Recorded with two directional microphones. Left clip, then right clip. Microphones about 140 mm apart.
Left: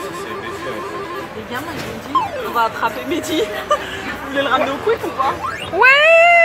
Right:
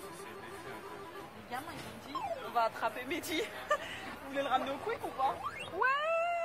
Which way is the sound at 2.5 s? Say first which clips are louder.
Left 14 dB; 25° right (ahead or behind).